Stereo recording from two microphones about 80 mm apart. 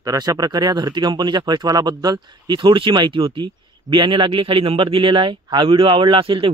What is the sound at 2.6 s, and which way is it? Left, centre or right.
Speech, right.